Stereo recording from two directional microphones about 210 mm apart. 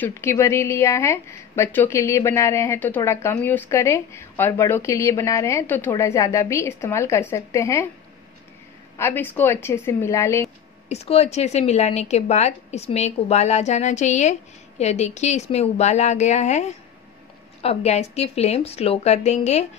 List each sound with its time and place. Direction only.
0.0 s a woman's voice: 10° left (ahead or behind)
8.9 s a woman's voice: 10° left (ahead or behind)
10.9 s a woman's voice: 30° left (ahead or behind)